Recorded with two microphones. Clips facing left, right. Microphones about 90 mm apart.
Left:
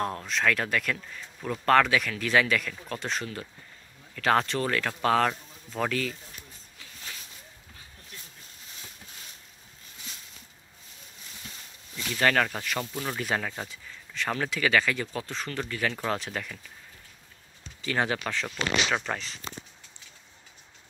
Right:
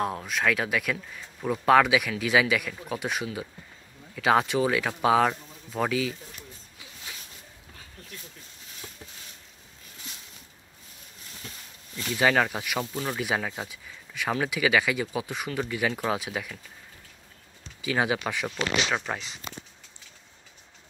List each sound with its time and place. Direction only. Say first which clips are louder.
0.0 s speech: right 1 dB; 5° right (ahead or behind)
12.0 s speech: right 2 dB; 10° right (ahead or behind)
17.8 s speech: right 2 dB; 10° right (ahead or behind)